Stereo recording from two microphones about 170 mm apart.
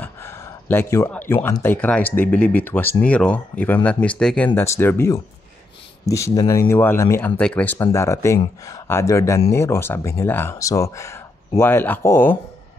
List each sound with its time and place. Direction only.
0.0 s speech: 15° left (ahead or behind)